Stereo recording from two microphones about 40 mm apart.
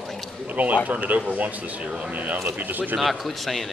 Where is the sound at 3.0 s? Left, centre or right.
Centre.